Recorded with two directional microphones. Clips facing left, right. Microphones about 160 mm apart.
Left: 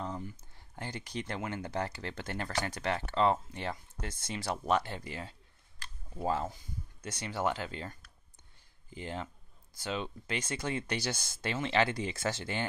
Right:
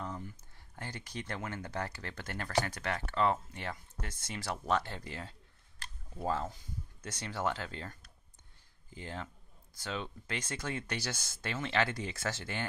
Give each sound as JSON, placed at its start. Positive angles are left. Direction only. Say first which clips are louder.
{"t": 0.7, "sound": "speech", "louder": "left 4 dB", "side_deg": 20}